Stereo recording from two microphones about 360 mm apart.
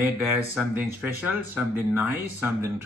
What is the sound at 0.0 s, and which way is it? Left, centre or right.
Speech, centre.